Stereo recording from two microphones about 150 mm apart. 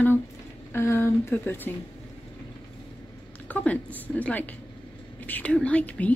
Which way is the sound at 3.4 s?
10° left (ahead or behind).